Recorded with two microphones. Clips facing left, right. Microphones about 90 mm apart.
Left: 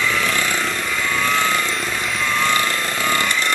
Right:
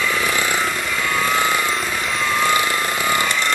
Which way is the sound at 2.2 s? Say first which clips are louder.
Right 1 dB; 10° right (ahead or behind).